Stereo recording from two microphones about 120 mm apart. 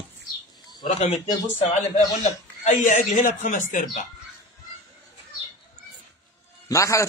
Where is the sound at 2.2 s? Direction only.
90° left.